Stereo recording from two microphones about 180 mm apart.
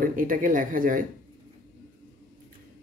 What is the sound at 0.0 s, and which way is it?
Speech, 50° right (ahead or behind).